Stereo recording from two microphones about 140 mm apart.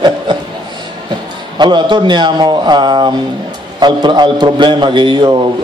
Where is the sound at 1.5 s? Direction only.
35° right (ahead or behind).